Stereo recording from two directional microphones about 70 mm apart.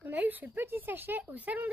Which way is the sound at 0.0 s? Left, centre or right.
Right.